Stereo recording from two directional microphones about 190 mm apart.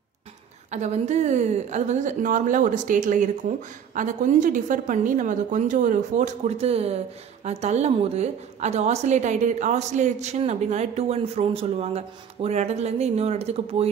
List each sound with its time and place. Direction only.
0.7 s a woman's voice: 40° right (ahead or behind)